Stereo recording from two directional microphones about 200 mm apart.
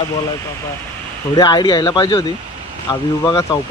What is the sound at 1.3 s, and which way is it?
Speech, 20° left (ahead or behind).